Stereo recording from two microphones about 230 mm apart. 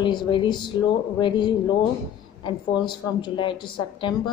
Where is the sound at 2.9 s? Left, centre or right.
Centre.